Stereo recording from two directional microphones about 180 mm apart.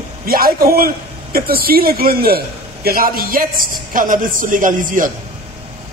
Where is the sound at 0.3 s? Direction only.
55° right (ahead or behind).